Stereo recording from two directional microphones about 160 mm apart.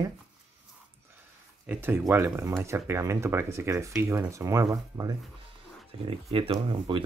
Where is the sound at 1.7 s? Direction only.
15° right (ahead or behind).